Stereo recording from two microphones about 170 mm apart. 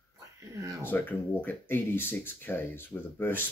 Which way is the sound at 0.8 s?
10° left (ahead or behind).